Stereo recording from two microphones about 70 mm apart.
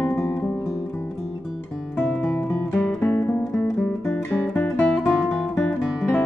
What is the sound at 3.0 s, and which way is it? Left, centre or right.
Music, left.